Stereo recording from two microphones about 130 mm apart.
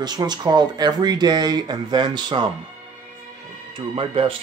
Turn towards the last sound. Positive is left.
turn(degrees=-45)  # may be behind; listen again after turning